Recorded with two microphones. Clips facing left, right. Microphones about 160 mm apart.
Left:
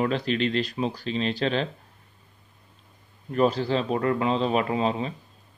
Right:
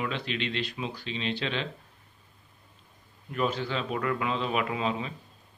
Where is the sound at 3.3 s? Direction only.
35° left (ahead or behind).